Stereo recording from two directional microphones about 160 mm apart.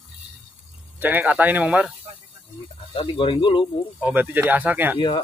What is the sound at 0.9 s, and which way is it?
Speech, 10° right (ahead or behind).